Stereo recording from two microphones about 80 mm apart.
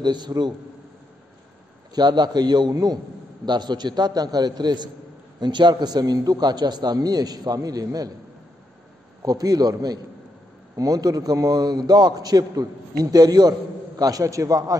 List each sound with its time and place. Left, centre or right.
0.0 s a man's voice: right
2.0 s a man's voice: right
2.7 s a man's voice: right
3.4 s a man's voice: right
9.2 s a man's voice: right